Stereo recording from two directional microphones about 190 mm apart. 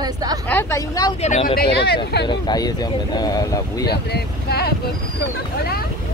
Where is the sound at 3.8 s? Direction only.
60° left (ahead or behind).